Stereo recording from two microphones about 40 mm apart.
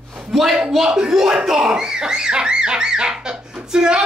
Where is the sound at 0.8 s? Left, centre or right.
Centre.